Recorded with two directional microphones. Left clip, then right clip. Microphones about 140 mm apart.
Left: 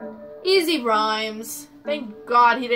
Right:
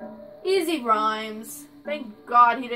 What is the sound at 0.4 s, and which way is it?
A woman's voice, 65° left (ahead or behind).